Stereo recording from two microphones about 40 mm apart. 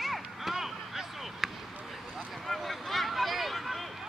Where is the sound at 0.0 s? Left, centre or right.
Centre.